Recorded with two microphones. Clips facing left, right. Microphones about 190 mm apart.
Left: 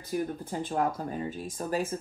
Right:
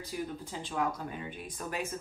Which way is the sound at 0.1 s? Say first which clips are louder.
Left 7 dB; 55° left (ahead or behind).